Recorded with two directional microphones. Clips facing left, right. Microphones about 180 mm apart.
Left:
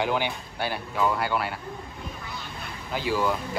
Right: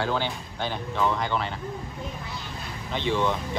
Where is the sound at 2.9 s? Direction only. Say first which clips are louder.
Even; 5° left (ahead or behind).